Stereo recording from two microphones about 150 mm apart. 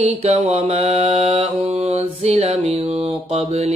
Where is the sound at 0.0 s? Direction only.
45° right (ahead or behind).